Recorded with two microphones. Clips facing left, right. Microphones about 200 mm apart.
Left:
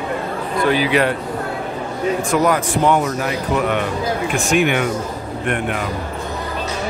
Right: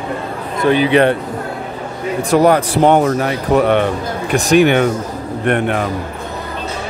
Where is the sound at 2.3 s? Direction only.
35° right (ahead or behind).